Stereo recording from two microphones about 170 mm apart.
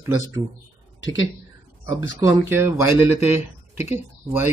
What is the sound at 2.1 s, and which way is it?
Speech, 15° right (ahead or behind).